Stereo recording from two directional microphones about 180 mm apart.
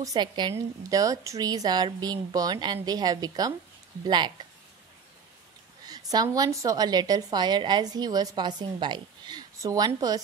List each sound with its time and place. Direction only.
0.0 s a woman's voice: 25° right (ahead or behind)
5.9 s a woman's voice: 20° right (ahead or behind)